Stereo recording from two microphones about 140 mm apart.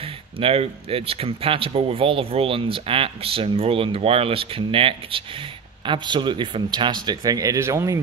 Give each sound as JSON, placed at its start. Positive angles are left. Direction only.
{"t": 0.0, "sound": "speech", "side_deg": -40}